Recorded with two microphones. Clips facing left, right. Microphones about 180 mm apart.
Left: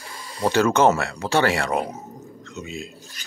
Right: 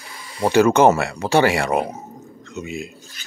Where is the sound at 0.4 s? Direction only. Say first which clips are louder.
Right 4 dB; 10° right (ahead or behind).